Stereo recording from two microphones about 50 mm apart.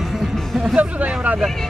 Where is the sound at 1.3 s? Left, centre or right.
Centre.